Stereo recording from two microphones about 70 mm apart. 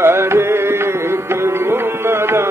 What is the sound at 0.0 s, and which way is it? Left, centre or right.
Music, right.